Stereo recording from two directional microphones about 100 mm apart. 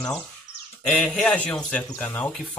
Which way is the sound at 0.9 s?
5° left (ahead or behind).